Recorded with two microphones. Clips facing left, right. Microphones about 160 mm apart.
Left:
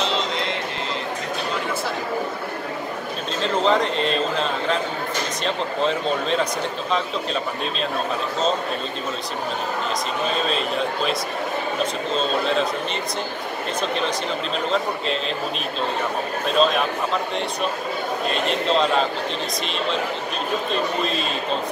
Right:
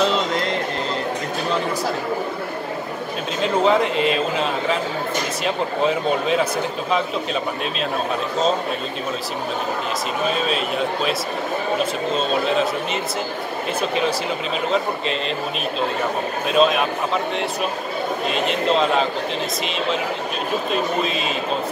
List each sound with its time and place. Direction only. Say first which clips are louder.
0.1 s music: right 3 dB; 45° right (ahead or behind)
3.5 s a man's voice: right 2 dB; 5° right (ahead or behind)
14.7 s speech: right 1 dB; centre (ahead or behind)
16.4 s speech: right 2 dB; 5° right (ahead or behind)
20.7 s speech: right 2 dB; 5° right (ahead or behind)